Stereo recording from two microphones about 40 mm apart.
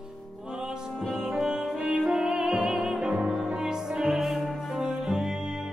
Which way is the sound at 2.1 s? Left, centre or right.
Centre.